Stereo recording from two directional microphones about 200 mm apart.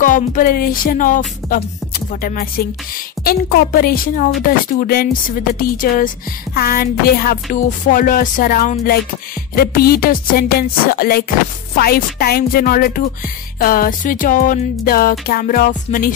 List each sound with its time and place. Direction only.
0.0 s music: 40° left (ahead or behind)